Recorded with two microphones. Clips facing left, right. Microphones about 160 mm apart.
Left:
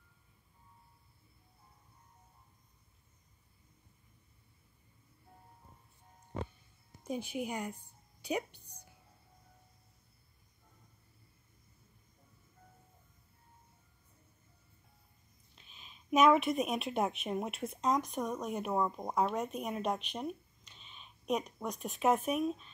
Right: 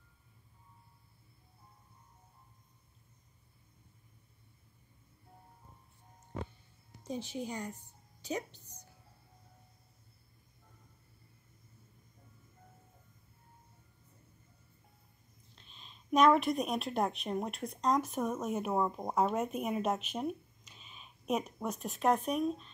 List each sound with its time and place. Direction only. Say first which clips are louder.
7.1 s music: left 1 dB; 10° left (ahead or behind)
15.5 s speech: right 1 dB; 5° left (ahead or behind)